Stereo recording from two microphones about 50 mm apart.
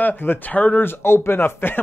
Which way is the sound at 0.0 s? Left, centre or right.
Left.